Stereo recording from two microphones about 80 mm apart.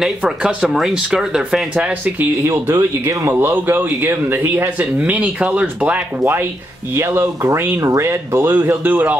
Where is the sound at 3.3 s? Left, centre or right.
Right.